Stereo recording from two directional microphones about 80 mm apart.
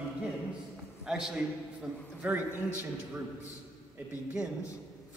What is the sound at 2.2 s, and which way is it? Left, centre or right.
Speech, centre.